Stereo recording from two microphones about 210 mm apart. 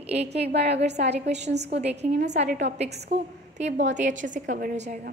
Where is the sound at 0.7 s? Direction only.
30° right (ahead or behind).